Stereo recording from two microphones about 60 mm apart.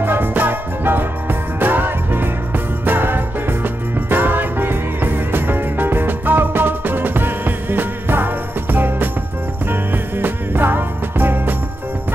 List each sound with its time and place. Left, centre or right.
0.0 s music: right